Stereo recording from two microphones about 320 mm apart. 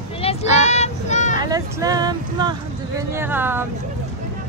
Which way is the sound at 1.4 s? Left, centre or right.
Centre.